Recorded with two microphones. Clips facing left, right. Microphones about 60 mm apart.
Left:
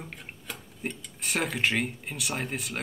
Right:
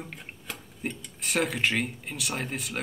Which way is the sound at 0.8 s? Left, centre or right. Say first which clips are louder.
Right 1 dB; centre.